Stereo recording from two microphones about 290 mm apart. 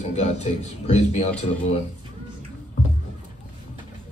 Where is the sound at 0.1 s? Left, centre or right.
Left.